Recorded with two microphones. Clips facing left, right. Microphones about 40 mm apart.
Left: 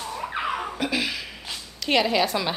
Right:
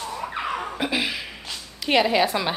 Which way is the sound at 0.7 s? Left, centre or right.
Centre.